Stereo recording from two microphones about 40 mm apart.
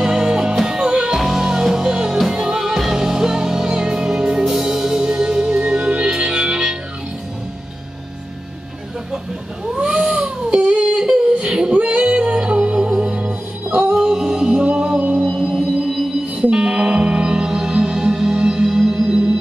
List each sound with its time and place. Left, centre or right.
0.0 s music: centre
9.7 s cat: centre
10.0 s a sound: right
11.3 s female singing: centre
11.7 s music: right
13.9 s music: centre
14.5 s music: right
15.8 s music: centre